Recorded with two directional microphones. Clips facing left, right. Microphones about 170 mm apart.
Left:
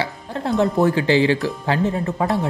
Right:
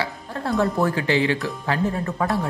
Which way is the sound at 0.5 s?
20° left (ahead or behind).